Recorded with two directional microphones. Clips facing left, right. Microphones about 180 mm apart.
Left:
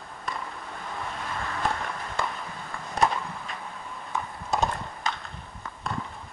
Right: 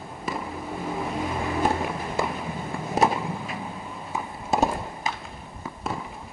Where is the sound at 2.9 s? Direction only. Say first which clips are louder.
Right 3 dB; 5° right (ahead or behind).